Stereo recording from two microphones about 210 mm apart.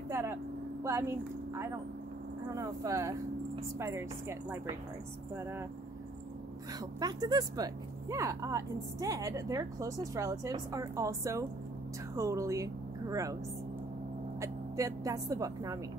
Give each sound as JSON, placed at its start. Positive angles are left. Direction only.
{"t": 0.1, "sound": "vehicle", "side_deg": -10}
{"t": 0.8, "sound": "speech", "side_deg": -10}
{"t": 6.7, "sound": "speech", "side_deg": -20}
{"t": 14.4, "sound": "a woman's voice", "side_deg": -15}